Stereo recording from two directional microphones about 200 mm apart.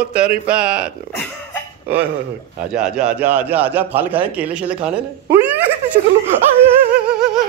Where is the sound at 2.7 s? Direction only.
5° right (ahead or behind).